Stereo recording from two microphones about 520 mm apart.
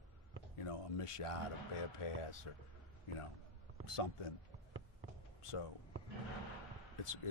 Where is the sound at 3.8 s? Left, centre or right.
Left.